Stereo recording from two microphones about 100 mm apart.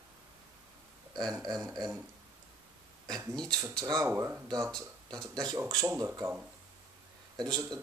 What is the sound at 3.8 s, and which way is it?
Speech, 30° right (ahead or behind).